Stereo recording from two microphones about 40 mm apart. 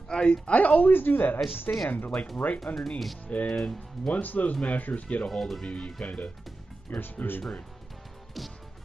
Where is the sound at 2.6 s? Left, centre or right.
Centre.